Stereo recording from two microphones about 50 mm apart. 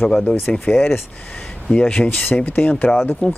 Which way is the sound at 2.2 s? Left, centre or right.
Left.